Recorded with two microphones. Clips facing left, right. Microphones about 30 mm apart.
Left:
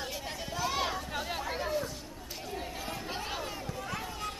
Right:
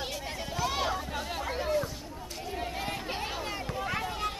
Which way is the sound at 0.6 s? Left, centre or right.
Centre.